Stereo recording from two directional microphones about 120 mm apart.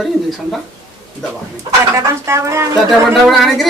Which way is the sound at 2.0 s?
25° right (ahead or behind).